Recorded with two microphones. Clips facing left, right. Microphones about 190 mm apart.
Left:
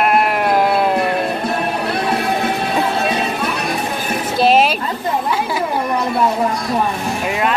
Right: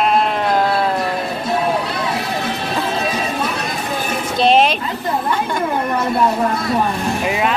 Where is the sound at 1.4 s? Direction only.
60° left (ahead or behind).